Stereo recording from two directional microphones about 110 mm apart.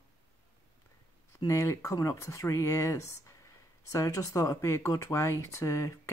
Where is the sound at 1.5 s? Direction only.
25° left (ahead or behind).